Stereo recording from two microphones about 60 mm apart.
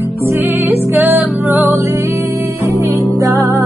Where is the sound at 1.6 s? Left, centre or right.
Right.